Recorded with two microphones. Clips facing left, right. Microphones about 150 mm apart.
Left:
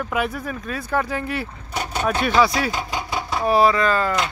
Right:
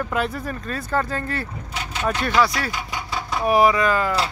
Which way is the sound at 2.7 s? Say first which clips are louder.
Left 4 dB; 25° left (ahead or behind).